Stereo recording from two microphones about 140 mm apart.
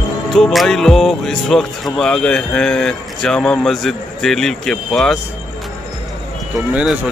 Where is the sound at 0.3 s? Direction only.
Centre (ahead or behind).